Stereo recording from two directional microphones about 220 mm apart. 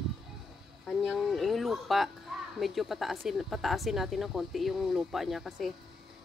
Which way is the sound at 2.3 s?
Centre (ahead or behind).